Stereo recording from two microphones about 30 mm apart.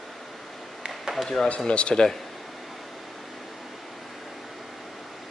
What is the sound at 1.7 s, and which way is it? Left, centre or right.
Speech, left.